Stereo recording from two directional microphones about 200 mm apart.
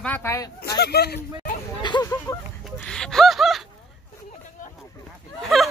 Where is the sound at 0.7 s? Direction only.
55° left (ahead or behind).